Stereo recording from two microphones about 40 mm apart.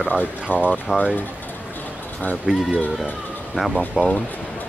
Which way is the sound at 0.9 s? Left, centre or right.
Right.